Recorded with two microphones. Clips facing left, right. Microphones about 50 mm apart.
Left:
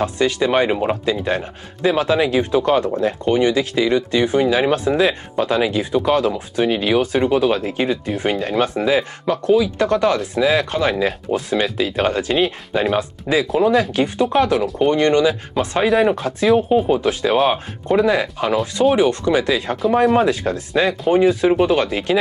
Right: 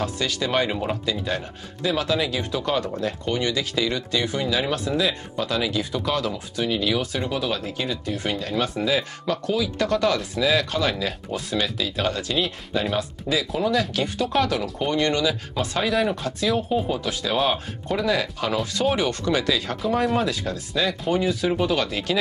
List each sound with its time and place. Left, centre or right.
0.0 s speech: left